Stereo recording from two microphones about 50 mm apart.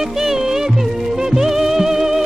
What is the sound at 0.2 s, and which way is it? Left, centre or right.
Music, centre.